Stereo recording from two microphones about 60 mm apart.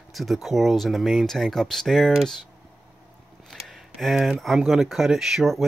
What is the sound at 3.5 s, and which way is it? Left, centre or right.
Speech, centre.